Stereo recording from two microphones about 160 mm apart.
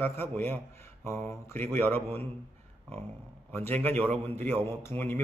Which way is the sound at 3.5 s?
10° left (ahead or behind).